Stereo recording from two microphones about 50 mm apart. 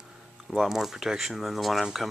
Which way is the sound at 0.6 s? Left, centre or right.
Centre.